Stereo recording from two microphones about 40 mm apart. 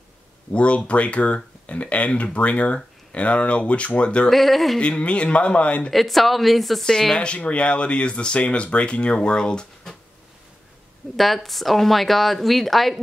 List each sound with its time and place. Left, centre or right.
0.5 s speech: left
4.3 s speech: centre
4.7 s speech: left
5.9 s speech: centre
6.8 s speech: centre
7.2 s speech: left
11.1 s speech: centre